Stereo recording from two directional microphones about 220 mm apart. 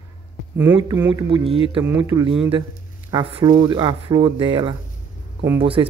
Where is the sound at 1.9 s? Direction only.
10° right (ahead or behind).